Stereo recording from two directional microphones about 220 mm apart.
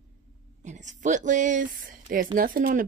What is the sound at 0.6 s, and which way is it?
Speech, 35° right (ahead or behind).